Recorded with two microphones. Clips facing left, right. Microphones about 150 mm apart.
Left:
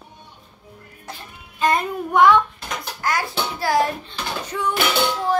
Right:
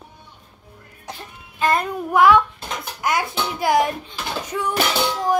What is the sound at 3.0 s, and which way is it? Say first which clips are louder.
Music: right 2 dB; 20° right (ahead or behind).